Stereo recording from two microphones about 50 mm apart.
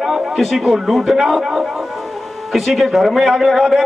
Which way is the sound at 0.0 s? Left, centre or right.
Centre.